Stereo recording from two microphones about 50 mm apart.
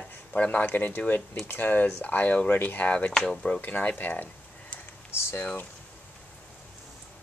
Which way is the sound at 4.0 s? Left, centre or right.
Left.